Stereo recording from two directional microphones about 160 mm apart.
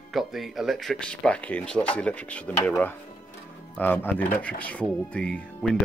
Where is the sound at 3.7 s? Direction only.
10° left (ahead or behind).